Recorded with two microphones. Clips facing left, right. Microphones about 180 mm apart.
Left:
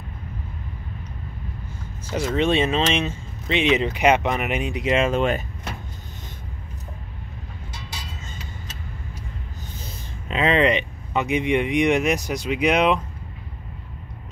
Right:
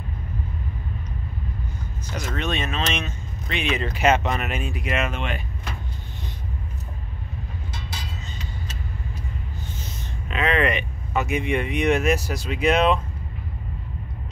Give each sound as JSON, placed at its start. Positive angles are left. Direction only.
{"t": 2.0, "sound": "speech", "side_deg": 30}
{"t": 9.8, "sound": "speech", "side_deg": 30}